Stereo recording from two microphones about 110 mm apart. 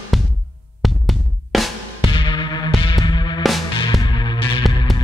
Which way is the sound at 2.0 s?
45° left (ahead or behind).